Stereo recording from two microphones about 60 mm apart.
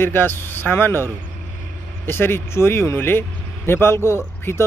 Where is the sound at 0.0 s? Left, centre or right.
Left.